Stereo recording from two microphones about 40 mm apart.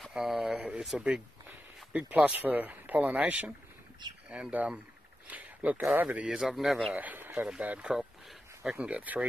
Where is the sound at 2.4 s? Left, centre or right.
Right.